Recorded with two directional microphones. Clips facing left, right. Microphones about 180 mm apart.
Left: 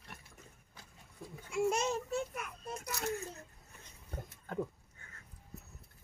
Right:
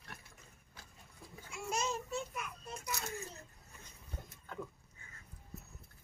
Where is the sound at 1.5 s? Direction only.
65° left (ahead or behind).